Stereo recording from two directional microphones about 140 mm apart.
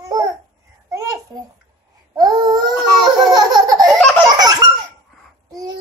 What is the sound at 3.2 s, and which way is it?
Laughter, 30° right (ahead or behind).